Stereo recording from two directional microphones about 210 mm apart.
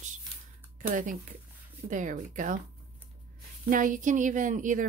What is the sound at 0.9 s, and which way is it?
Speech, 40° right (ahead or behind).